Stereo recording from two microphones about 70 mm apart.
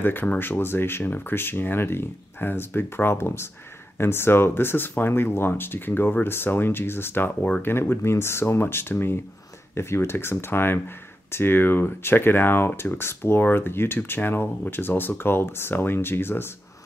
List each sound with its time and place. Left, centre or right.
0.0 s speech: left